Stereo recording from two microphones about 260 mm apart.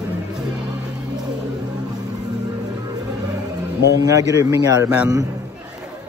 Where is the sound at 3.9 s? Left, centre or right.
Centre.